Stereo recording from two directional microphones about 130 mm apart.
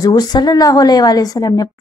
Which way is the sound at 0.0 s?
30° left (ahead or behind).